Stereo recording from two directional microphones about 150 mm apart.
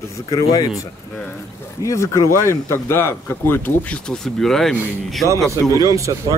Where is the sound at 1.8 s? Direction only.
20° left (ahead or behind); by 4.8 s 5° left (ahead or behind).